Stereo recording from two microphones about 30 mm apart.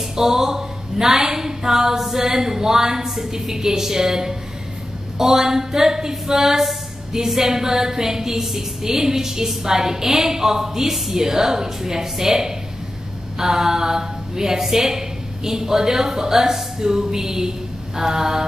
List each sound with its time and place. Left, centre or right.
0.1 s a woman's voice: centre